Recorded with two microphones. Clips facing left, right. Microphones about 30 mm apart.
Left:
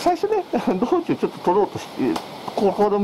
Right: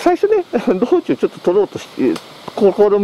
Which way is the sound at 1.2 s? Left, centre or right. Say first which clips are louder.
Right 6 dB; right.